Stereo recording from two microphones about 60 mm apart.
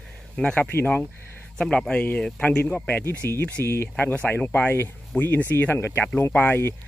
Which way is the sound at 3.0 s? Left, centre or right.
Left.